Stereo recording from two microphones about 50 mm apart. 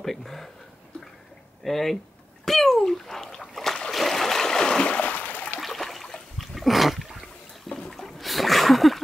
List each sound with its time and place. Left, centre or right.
0.0 s speech: centre
1.6 s speech: centre
2.4 s splash: centre
3.9 s stream: centre
4.8 s a sound: left
5.6 s trickle: centre
6.3 s a sound: centre